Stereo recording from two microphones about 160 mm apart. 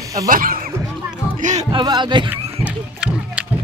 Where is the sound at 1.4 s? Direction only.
45° right (ahead or behind).